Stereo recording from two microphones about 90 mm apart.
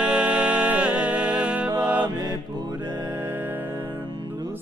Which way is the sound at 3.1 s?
25° right (ahead or behind).